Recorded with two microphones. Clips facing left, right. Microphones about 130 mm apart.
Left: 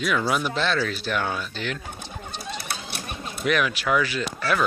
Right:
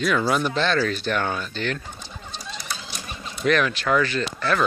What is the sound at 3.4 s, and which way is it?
Speech, 5° left (ahead or behind).